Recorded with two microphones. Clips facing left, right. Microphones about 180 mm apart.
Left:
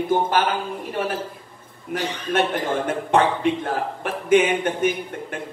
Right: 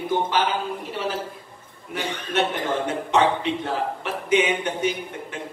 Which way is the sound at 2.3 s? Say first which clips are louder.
Left 2 dB; 50° left (ahead or behind).